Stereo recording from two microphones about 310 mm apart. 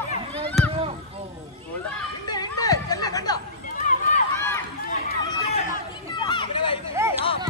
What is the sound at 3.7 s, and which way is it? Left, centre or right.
Run, left.